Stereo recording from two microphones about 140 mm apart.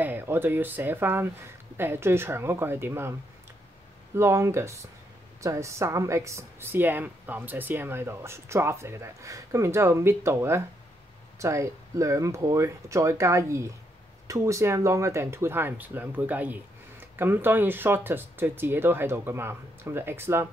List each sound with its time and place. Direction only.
0.0 s a woman's voice: 15° right (ahead or behind)